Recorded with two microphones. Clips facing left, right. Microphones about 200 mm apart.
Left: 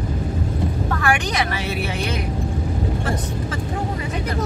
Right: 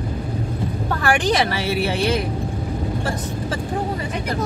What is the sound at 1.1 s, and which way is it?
Speech, 30° right (ahead or behind).